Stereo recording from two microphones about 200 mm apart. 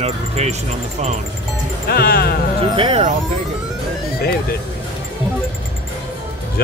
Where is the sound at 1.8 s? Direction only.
50° left (ahead or behind).